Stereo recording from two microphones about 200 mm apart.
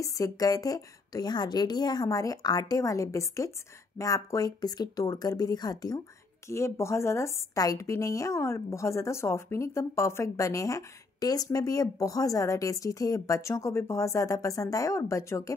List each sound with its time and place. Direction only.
0.0 s a woman's voice: 15° left (ahead or behind)